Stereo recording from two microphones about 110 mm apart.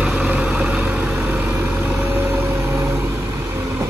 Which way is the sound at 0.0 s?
10° right (ahead or behind).